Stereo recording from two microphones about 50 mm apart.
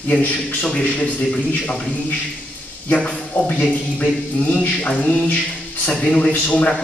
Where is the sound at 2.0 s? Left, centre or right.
Left.